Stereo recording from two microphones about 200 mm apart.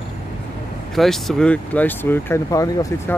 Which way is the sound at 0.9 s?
Centre (ahead or behind).